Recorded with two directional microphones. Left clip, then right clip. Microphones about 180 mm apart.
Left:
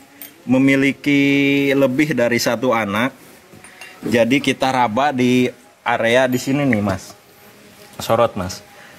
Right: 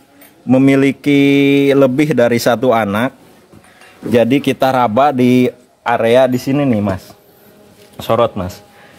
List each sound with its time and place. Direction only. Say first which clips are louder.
0.5 s speech: right 4 dB; 70° right (ahead or behind)
4.1 s speech: right 3 dB; 60° right (ahead or behind)
8.0 s speech: right 3 dB; 35° right (ahead or behind)